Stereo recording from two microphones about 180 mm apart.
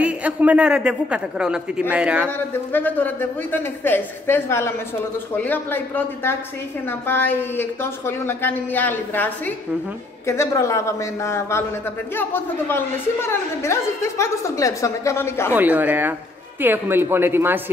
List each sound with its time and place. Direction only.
0.0 s a woman's voice: 5° right (ahead or behind)
2.2 s speech: 10° left (ahead or behind)
15.5 s a woman's voice: 10° right (ahead or behind)